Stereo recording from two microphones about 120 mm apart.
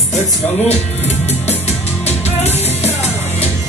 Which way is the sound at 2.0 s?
65° left (ahead or behind).